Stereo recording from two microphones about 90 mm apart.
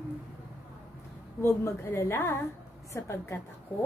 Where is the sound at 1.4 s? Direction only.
30° left (ahead or behind).